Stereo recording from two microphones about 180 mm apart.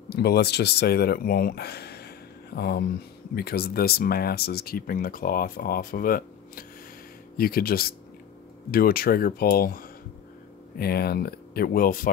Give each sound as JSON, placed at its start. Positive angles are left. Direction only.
{"t": 0.1, "sound": "speech", "side_deg": 65}